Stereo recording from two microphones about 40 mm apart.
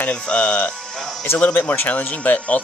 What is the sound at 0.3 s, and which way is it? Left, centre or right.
Speech, left.